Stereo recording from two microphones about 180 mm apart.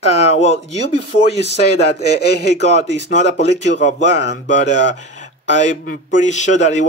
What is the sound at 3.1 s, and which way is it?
Speech, 40° left (ahead or behind).